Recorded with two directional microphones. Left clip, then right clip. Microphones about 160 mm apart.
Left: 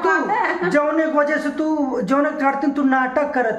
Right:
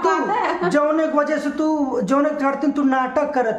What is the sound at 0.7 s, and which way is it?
A man's voice, 10° right (ahead or behind).